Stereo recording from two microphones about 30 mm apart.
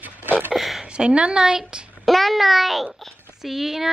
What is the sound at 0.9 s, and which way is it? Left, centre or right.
Speech, right.